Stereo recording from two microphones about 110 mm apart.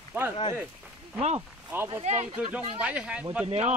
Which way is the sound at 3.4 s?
75° right (ahead or behind).